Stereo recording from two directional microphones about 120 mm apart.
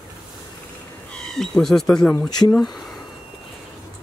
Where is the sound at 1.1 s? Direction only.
5° left (ahead or behind).